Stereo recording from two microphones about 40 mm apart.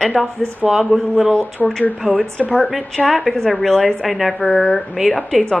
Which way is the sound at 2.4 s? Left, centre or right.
Left.